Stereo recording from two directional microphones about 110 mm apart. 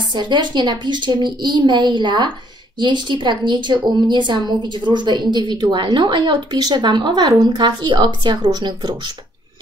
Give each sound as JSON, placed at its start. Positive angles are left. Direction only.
{"t": 0.1, "sound": "a woman's voice", "side_deg": -45}